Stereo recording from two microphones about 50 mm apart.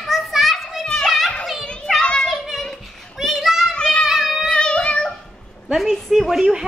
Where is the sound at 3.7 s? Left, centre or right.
Centre.